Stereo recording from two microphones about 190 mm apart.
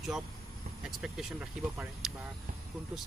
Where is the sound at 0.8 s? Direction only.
5° right (ahead or behind).